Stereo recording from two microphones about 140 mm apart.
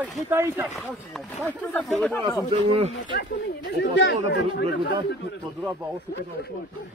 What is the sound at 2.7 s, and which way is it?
Speech, 40° right (ahead or behind).